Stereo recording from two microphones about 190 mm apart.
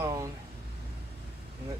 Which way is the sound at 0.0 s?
15° right (ahead or behind).